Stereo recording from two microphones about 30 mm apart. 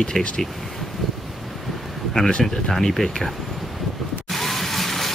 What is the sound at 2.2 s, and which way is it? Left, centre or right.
Speech, left.